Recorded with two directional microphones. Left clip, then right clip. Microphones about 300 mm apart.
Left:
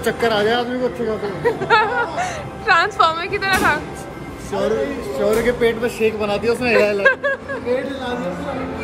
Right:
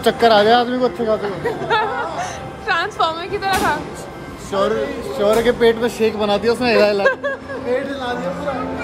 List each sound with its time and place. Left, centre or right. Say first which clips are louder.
0.0 s speech: right 5 dB; right
1.4 s a woman's voice: left 3 dB; centre
5.3 s speech: right 4 dB; right
7.0 s a woman's voice: left 1 dB; centre